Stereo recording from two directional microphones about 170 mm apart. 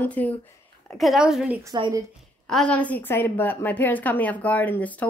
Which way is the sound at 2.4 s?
5° left (ahead or behind).